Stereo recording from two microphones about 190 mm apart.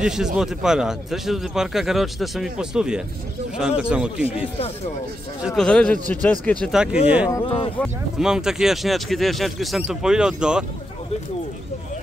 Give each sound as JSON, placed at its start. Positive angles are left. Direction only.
{"t": 0.0, "sound": "speech", "side_deg": -5}
{"t": 4.3, "sound": "speech", "side_deg": 30}
{"t": 5.4, "sound": "speech", "side_deg": 0}
{"t": 7.4, "sound": "speech", "side_deg": 25}
{"t": 8.2, "sound": "speech", "side_deg": -5}